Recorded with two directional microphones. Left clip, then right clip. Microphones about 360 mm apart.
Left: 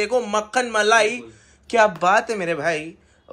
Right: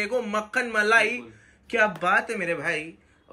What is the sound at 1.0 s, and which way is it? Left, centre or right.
Speech, left.